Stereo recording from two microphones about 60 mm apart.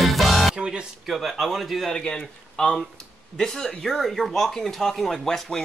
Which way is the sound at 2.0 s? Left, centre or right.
Centre.